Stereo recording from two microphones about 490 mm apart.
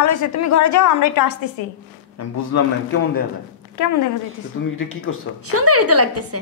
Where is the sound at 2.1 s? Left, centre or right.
Left.